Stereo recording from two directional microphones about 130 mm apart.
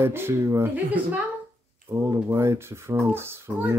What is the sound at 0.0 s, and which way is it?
Speech, 20° right (ahead or behind).